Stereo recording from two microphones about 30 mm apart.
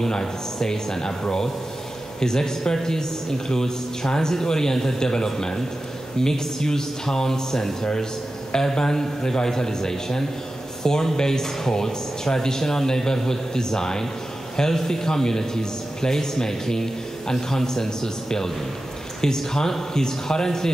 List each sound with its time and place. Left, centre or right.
0.0 s a man's voice: centre
2.1 s a man's voice: centre